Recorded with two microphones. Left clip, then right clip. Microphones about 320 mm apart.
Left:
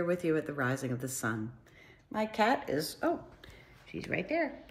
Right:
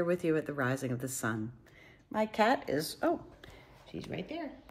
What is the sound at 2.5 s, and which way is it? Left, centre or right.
A woman's voice, centre.